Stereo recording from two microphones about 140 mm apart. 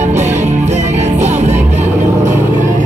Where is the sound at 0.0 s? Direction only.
55° right (ahead or behind).